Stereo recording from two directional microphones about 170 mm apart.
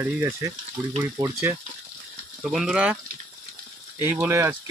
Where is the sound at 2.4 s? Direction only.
Centre (ahead or behind).